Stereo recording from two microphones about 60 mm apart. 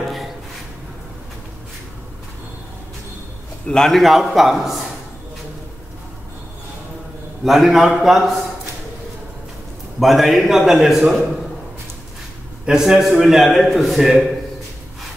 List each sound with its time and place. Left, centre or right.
3.6 s a man's voice: centre
7.4 s a man's voice: centre
9.9 s a man's voice: centre
12.6 s a man's voice: centre